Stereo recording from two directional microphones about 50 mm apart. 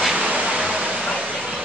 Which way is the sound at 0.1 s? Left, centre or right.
Right.